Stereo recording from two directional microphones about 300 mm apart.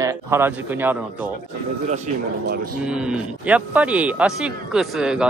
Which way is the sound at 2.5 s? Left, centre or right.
Right.